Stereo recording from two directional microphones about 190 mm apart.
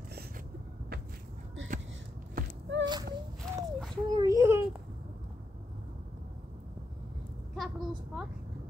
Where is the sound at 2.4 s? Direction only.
50° right (ahead or behind).